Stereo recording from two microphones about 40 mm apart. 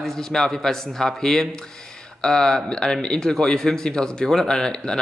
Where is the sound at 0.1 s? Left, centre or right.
Centre.